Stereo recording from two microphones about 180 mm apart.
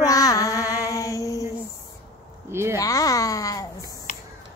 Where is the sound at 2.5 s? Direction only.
15° right (ahead or behind).